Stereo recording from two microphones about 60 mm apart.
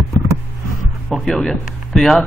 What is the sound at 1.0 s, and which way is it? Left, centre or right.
Speech, centre.